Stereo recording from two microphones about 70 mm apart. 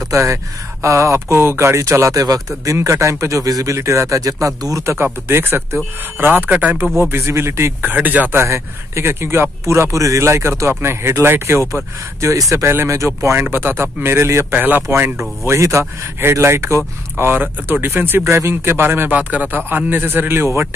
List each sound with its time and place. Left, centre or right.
0.1 s speech: right
4.9 s speech: right
7.0 s speech: right
7.8 s speech: right
8.4 s speech: right
14.5 s speech: right
18.2 s speech: right
18.5 s speech: right